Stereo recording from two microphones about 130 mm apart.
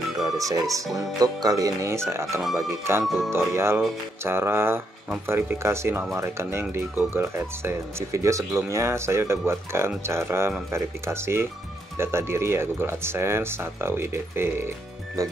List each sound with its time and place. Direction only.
0.4 s speech: 25° right (ahead or behind)